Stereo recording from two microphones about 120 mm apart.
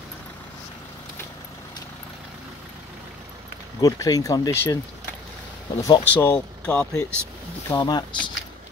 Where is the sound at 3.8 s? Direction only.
30° left (ahead or behind).